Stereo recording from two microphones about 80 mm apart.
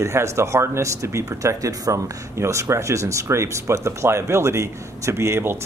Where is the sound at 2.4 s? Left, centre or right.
Right.